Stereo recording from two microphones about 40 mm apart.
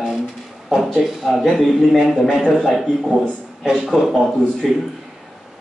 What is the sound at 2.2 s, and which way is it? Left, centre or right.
Speech, centre.